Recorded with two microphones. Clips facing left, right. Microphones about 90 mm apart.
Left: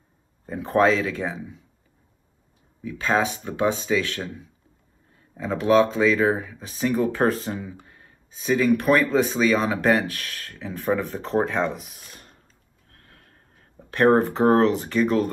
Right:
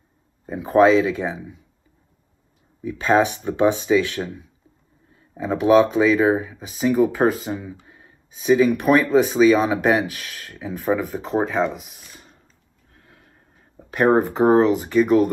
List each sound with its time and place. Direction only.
0.5 s speech: 5° right (ahead or behind)
2.8 s speech: 20° right (ahead or behind)
5.4 s speech: 10° right (ahead or behind)
12.9 s snort: 10° right (ahead or behind)
13.7 s speech: 10° right (ahead or behind)